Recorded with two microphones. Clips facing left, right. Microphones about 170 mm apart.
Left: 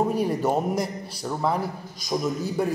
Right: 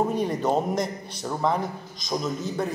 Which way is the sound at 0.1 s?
5° left (ahead or behind).